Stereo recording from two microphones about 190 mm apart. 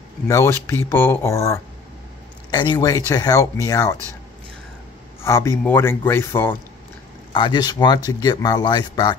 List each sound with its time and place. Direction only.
0.3 s speech: 15° left (ahead or behind)
5.2 s speech: 15° left (ahead or behind)
7.3 s speech: 25° left (ahead or behind)